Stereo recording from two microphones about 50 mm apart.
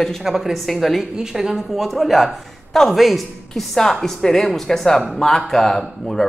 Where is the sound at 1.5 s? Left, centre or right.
Centre.